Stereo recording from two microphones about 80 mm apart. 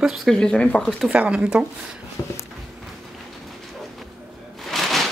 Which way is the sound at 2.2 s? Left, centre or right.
Left.